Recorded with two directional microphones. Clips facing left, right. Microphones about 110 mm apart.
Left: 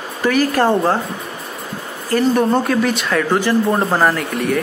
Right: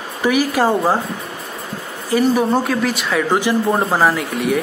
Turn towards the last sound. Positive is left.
turn(degrees=-5)  # may be behind; listen again after turning